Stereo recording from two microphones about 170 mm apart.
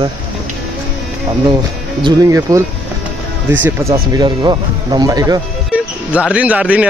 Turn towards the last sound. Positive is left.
turn(degrees=-10)  # may be behind; listen again after turning